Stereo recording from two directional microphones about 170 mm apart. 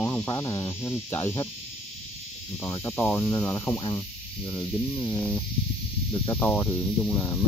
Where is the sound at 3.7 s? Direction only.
25° left (ahead or behind).